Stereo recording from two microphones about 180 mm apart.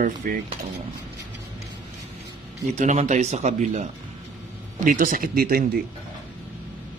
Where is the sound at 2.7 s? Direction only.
40° right (ahead or behind); by 5.8 s 55° right (ahead or behind).